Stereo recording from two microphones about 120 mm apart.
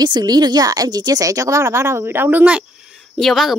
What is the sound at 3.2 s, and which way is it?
Speech, centre (ahead or behind).